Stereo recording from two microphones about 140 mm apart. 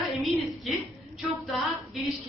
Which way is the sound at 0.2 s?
Centre (ahead or behind).